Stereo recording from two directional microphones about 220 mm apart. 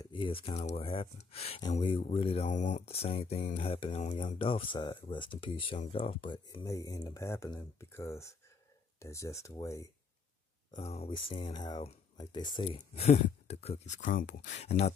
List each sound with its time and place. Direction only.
0.0 s speech: 25° left (ahead or behind)
10.7 s speech: 30° left (ahead or behind)